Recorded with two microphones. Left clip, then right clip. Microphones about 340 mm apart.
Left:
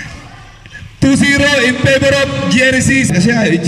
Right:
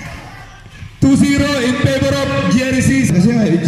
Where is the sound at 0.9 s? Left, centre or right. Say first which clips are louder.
Left 2 dB; left.